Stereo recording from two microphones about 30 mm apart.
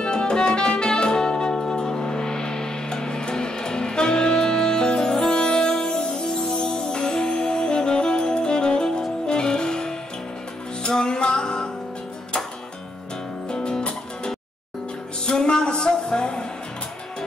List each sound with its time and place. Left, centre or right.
0.0 s music: left
13.5 s music: left